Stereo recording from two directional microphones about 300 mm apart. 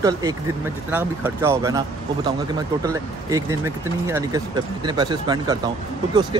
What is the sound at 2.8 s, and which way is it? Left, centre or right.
Speech, centre.